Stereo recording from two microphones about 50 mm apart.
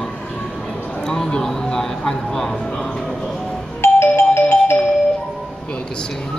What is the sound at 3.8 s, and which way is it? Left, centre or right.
Music, left.